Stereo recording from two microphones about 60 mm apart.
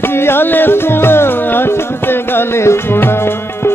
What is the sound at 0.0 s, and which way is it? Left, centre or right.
Music, left.